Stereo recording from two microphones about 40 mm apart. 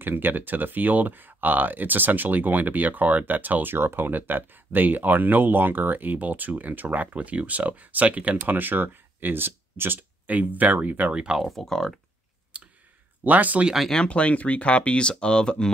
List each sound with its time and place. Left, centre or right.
0.0 s speech: right
3.7 s speech: right
7.2 s speech: right
8.4 s speech: right
10.2 s speech: right
11.5 s speech: centre
12.5 s clicking: right
13.2 s speech: right
14.0 s speech: left